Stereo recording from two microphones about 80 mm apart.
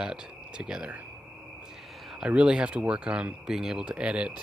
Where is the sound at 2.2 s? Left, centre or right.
Centre.